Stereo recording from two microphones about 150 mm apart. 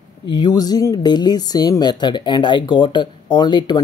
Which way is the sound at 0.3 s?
25° left (ahead or behind).